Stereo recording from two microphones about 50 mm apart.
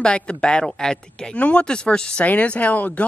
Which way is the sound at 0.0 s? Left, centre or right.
Centre.